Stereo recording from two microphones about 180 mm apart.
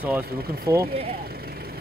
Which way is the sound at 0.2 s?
60° right (ahead or behind).